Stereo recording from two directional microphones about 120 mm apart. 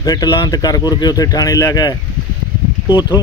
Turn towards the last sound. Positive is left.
turn(degrees=35)  # may be behind; listen again after turning